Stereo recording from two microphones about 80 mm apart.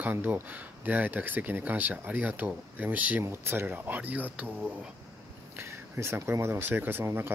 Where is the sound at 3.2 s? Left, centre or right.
Right.